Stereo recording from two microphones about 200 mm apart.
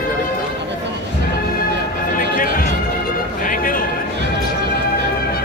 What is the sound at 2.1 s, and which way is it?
Music, 45° left (ahead or behind).